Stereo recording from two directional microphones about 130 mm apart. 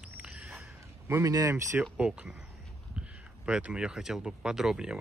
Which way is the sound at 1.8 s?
5° right (ahead or behind).